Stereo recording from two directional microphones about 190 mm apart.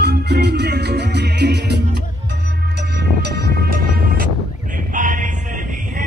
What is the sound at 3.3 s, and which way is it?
Music, 55° right (ahead or behind).